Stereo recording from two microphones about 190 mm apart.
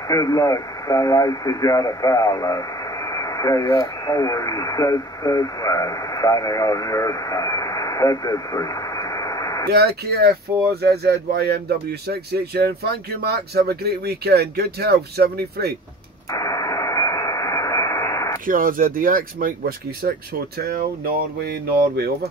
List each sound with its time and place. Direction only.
0.1 s speech: 20° left (ahead or behind)
9.7 s speech: 55° right (ahead or behind)
16.3 s radio: 20° left (ahead or behind)
18.5 s speech: 45° right (ahead or behind)